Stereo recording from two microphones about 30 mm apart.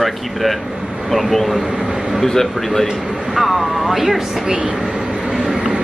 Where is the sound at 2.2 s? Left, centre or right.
Centre.